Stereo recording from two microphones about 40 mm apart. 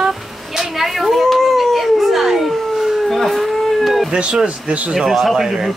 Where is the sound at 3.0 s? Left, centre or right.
Centre.